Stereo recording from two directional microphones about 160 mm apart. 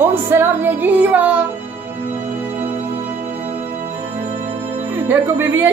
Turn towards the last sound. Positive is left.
turn(degrees=-15)  # may be behind; listen again after turning